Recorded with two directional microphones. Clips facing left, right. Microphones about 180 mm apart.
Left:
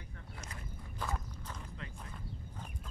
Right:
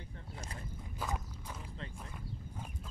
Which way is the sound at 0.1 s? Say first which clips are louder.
Right 1 dB; 30° right (ahead or behind).